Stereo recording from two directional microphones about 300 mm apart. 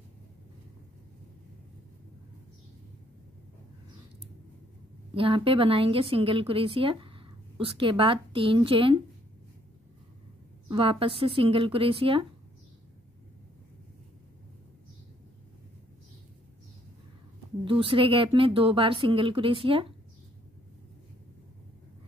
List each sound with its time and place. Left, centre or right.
5.1 s a woman's voice: centre
10.7 s a woman's voice: centre
17.6 s a woman's voice: centre